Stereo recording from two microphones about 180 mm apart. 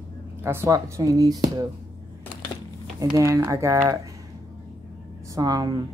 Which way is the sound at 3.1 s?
15° right (ahead or behind).